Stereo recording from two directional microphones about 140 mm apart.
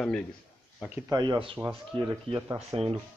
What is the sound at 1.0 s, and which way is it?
Speech, 30° right (ahead or behind).